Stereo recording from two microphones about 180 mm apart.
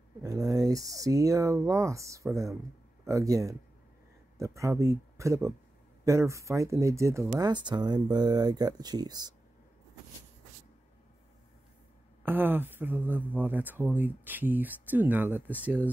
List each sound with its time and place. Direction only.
0.2 s speech: 20° right (ahead or behind)
12.3 s speech: 10° right (ahead or behind)